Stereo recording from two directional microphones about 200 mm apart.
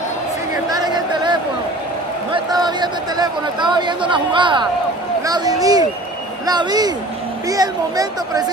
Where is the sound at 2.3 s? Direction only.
20° right (ahead or behind).